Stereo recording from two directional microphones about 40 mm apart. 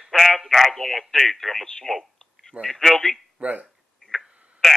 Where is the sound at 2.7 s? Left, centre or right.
Centre.